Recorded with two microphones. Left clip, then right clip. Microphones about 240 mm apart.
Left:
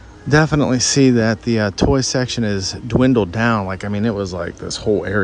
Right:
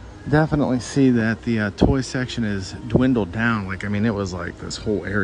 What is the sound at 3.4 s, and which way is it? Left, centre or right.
Speech, centre.